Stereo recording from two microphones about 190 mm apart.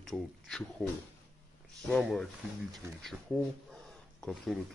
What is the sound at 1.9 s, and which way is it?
Speech, 5° left (ahead or behind).